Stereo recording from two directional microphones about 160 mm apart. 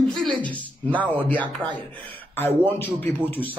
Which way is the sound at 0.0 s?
Centre (ahead or behind).